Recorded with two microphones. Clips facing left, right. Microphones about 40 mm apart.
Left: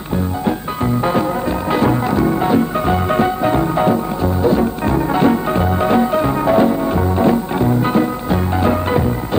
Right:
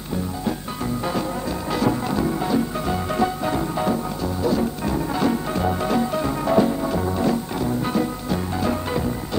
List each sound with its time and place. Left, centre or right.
1.7 s music: left